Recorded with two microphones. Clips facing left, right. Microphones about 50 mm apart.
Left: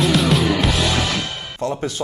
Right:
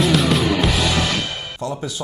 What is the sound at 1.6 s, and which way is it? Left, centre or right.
Speech, left.